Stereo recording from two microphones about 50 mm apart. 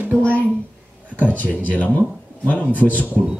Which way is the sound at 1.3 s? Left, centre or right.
Left.